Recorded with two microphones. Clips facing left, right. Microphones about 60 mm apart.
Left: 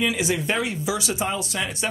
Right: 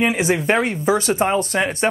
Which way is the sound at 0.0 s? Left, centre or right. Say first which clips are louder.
Right 5 dB; right.